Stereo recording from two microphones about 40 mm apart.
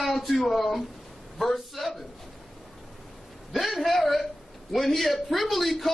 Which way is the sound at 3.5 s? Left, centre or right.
Centre.